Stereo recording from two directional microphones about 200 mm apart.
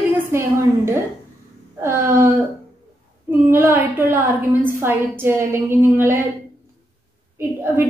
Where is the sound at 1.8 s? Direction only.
15° right (ahead or behind).